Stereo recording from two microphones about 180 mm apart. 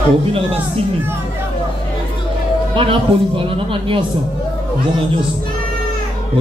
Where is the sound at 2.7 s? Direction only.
30° right (ahead or behind).